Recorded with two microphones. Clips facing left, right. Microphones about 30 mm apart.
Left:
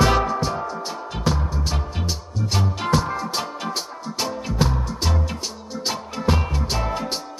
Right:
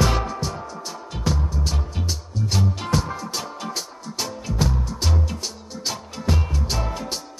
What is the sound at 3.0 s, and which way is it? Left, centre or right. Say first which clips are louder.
Music: left 4 dB; left.